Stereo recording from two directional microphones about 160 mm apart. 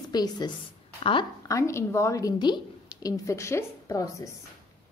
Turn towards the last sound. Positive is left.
turn(degrees=20)  # may be behind; listen again after turning